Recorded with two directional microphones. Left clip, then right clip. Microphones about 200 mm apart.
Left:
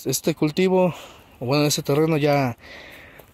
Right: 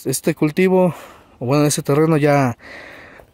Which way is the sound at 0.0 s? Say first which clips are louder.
Right 3 dB; 30° right (ahead or behind).